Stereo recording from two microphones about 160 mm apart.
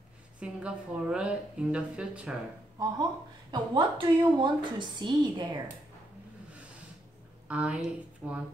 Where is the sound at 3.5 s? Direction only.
30° right (ahead or behind).